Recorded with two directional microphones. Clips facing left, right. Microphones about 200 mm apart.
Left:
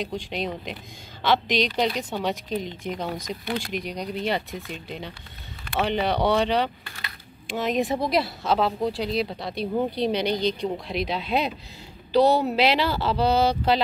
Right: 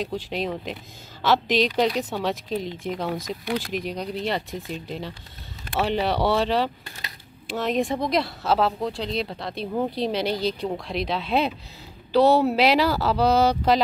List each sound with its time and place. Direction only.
0.0 s speech: 5° right (ahead or behind)